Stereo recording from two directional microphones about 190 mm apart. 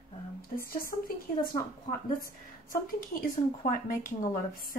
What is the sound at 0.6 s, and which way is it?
Speech, 50° left (ahead or behind).